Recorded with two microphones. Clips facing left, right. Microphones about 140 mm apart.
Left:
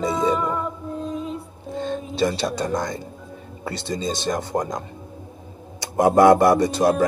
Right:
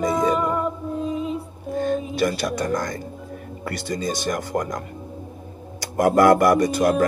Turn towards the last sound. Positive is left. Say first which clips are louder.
# even
turn(degrees=25)  # may be behind; listen again after turning